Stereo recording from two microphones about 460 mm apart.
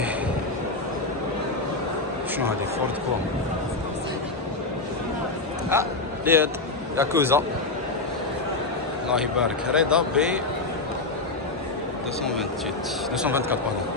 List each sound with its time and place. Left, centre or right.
5.7 s a man's voice: centre
9.1 s speech: centre
13.2 s speech: centre